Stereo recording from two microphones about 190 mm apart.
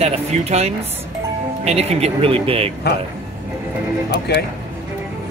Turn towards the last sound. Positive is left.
turn(degrees=60)  # may be behind; listen again after turning